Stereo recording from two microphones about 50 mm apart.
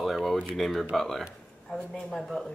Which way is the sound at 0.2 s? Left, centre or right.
Centre.